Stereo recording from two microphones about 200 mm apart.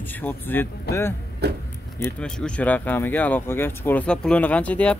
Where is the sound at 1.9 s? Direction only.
15° left (ahead or behind).